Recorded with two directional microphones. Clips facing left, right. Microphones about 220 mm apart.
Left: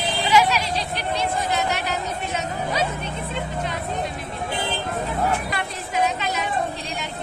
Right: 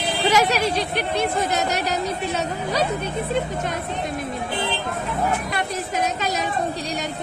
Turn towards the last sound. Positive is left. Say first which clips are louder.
# even
turn(degrees=-40)  # may be behind; listen again after turning